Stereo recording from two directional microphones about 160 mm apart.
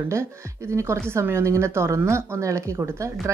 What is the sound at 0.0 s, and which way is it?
A woman's voice, 15° right (ahead or behind).